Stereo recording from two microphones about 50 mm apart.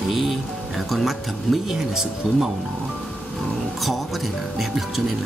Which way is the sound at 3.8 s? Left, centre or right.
Centre.